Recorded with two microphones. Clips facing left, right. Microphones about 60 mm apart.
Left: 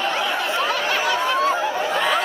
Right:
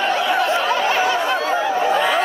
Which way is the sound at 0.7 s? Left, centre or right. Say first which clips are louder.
Right 3 dB; right.